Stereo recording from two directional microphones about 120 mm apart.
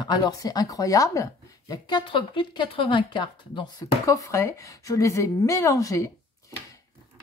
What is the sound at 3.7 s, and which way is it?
Speech, 25° left (ahead or behind).